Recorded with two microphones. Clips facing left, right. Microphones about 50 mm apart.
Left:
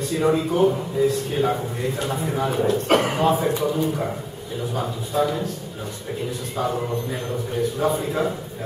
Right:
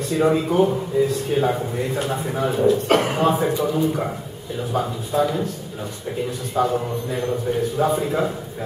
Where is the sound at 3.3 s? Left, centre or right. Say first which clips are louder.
Right 1 dB; centre.